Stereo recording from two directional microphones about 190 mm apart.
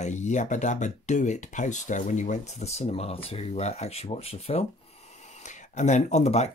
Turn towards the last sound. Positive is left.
turn(degrees=35)  # may be behind; listen again after turning